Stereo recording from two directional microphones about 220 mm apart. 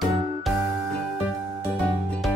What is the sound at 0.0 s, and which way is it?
Music, centre (ahead or behind).